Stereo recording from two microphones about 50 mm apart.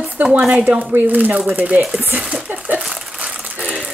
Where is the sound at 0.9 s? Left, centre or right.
Right.